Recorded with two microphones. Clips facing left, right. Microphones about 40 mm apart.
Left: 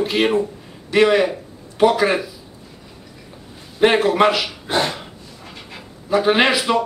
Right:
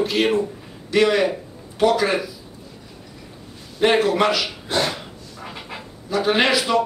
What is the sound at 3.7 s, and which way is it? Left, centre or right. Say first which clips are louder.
Speech: left 2 dB; centre.